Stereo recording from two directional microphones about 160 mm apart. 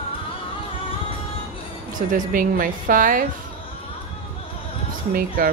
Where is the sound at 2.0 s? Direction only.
55° right (ahead or behind).